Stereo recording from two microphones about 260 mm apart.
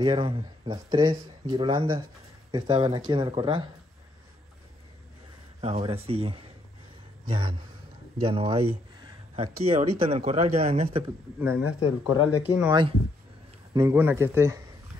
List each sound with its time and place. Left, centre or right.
0.0 s speech: right
5.6 s speech: right
11.3 s speech: centre
11.6 s speech: left
13.7 s speech: centre